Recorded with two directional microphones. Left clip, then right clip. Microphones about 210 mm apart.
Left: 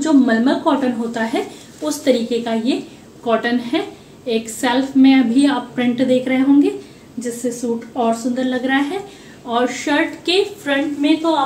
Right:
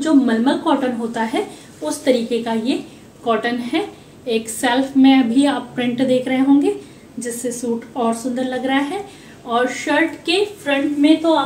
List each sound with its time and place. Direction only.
0.0 s a woman's voice: centre (ahead or behind)